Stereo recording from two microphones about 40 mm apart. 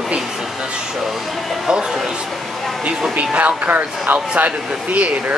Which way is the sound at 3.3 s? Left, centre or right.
Right.